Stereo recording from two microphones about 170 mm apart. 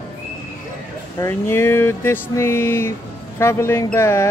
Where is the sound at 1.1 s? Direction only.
15° left (ahead or behind).